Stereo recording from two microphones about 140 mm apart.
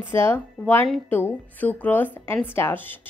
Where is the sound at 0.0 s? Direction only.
15° left (ahead or behind).